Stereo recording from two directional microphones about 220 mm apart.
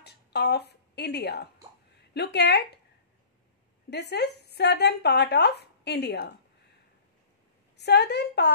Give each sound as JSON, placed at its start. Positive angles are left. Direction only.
{"t": 0.0, "sound": "speech", "side_deg": 50}
{"t": 3.9, "sound": "speech", "side_deg": 50}
{"t": 7.7, "sound": "a woman's voice", "side_deg": 50}